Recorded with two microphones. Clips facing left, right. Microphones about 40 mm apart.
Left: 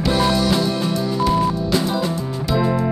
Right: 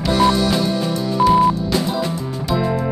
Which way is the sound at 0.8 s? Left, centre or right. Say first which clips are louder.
Right 3 dB; centre.